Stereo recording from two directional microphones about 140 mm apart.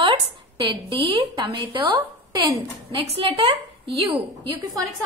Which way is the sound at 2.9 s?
40° right (ahead or behind).